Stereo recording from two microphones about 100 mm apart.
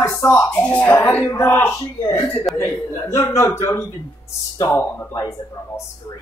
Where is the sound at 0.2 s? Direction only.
25° left (ahead or behind).